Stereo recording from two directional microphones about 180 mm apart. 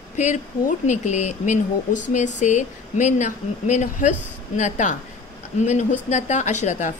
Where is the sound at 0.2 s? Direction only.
40° left (ahead or behind).